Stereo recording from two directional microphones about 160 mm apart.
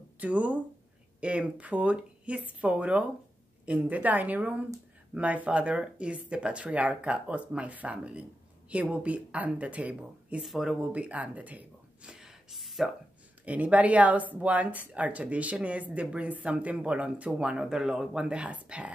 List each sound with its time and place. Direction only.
0.2 s speech: 10° right (ahead or behind)